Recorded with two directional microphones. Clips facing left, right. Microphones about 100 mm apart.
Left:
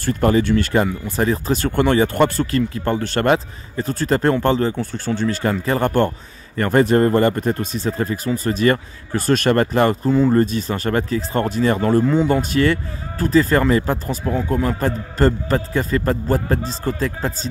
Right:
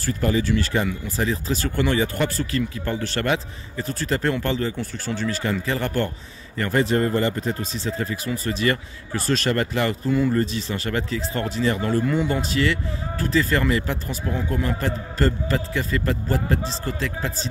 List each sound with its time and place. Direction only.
0.0 s speech: 55° left (ahead or behind)
10.1 s speech: 30° left (ahead or behind)
10.4 s speech: 45° left (ahead or behind)
12.1 s speech: 30° left (ahead or behind)
12.4 s speech: 45° left (ahead or behind)